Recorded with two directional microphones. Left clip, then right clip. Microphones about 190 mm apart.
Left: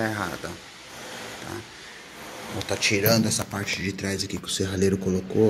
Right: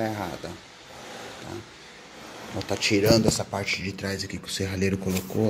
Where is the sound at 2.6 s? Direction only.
20° right (ahead or behind).